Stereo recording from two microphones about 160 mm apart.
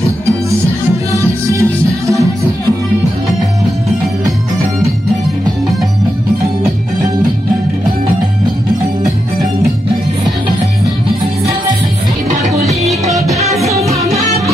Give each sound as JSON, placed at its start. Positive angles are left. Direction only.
{"t": 1.1, "sound": "music", "side_deg": -20}
{"t": 13.1, "sound": "music", "side_deg": -20}
{"t": 13.8, "sound": "music", "side_deg": -40}